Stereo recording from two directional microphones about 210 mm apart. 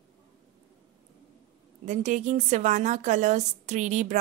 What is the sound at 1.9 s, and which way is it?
A woman's voice, 35° right (ahead or behind).